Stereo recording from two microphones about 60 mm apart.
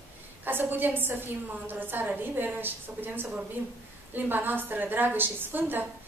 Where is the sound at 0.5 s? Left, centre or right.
Right.